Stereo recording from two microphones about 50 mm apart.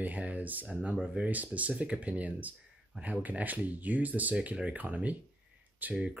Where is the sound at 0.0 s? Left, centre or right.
Right.